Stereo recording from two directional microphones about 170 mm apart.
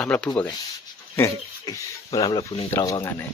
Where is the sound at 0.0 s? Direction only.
5° left (ahead or behind).